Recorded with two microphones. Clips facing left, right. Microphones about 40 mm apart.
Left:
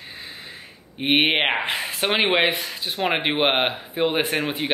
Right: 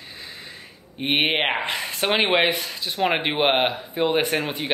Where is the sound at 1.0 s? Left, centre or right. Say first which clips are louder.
Left 2 dB; centre.